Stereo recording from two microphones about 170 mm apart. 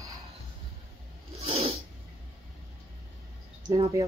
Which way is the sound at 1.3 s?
35° right (ahead or behind).